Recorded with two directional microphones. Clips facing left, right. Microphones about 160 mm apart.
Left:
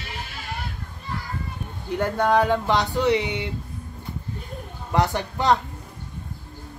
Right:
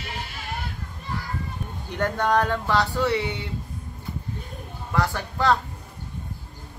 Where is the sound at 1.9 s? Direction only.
10° left (ahead or behind).